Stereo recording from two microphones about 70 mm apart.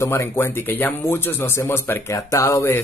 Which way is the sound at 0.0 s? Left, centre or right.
Left.